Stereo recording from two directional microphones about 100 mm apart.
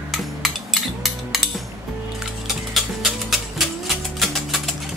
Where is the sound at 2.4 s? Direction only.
Centre (ahead or behind).